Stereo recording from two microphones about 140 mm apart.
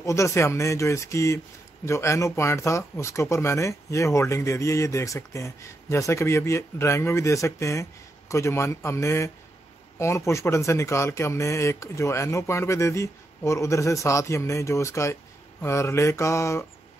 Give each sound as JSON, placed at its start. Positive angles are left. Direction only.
{"t": 0.0, "sound": "speech", "side_deg": 20}